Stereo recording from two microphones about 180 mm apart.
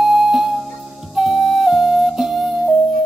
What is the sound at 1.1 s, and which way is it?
Flute, centre (ahead or behind).